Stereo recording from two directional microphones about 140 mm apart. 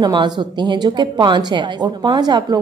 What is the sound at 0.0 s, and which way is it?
A woman's voice, 35° right (ahead or behind).